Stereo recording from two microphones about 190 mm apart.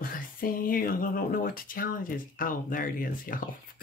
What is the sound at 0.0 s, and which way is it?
Speech, 50° left (ahead or behind).